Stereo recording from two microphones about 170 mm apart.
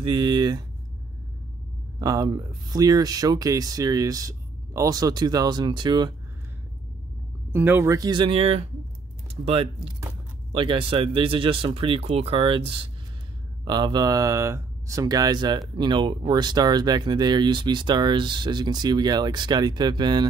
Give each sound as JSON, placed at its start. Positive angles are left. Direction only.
{"t": 0.0, "sound": "speech", "side_deg": -30}
{"t": 2.0, "sound": "speech", "side_deg": -25}
{"t": 7.5, "sound": "speech", "side_deg": -10}